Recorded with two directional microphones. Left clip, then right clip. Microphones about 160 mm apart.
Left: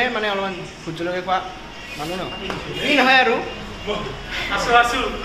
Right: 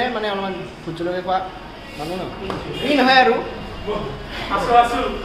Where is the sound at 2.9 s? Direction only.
20° left (ahead or behind).